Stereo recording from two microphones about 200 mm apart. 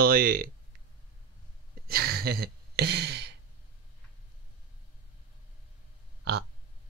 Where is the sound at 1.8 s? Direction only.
50° right (ahead or behind).